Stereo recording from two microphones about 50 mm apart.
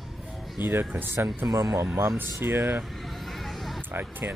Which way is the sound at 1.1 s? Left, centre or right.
Right.